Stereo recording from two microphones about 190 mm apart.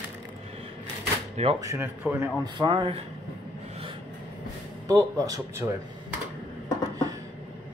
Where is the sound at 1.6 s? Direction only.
15° right (ahead or behind).